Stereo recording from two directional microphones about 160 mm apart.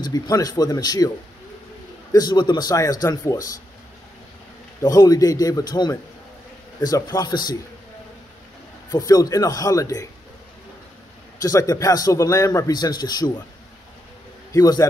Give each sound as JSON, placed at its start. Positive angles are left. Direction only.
{"t": 0.0, "sound": "a man's voice", "side_deg": 25}
{"t": 2.1, "sound": "a man's voice", "side_deg": 25}
{"t": 4.8, "sound": "a man's voice", "side_deg": 25}
{"t": 8.9, "sound": "a man's voice", "side_deg": 20}
{"t": 11.4, "sound": "a man's voice", "side_deg": 20}
{"t": 14.5, "sound": "a man's voice", "side_deg": 20}